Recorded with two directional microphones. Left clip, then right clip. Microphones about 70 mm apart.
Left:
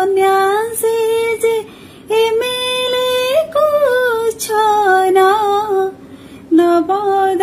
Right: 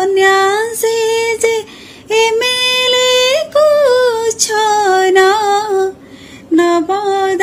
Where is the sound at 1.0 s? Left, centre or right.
Left.